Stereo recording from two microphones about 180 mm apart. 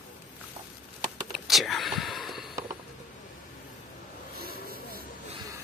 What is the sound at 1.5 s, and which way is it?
Whispering, centre (ahead or behind).